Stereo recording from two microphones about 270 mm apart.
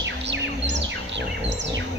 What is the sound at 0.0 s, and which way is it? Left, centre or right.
Bird, right.